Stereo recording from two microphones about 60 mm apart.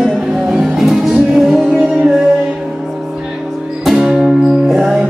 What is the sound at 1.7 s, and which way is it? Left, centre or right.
Music, right.